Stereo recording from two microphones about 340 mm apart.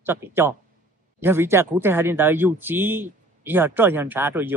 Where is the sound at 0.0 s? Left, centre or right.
Centre.